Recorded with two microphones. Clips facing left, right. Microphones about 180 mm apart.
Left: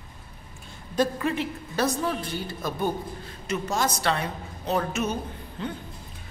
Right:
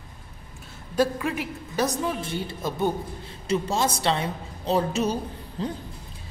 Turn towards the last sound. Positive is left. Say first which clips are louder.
# right 3 dB
turn(degrees=-35)  # may be behind; listen again after turning